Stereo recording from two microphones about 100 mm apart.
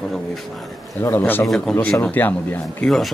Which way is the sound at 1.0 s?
20° left (ahead or behind).